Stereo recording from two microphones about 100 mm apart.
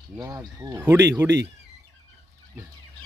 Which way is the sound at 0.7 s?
25° right (ahead or behind).